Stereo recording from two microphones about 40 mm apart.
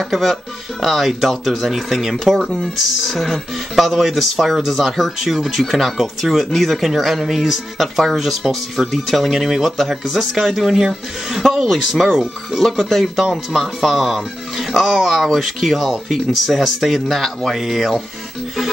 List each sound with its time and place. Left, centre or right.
0.1 s speech: centre
17.6 s speech: centre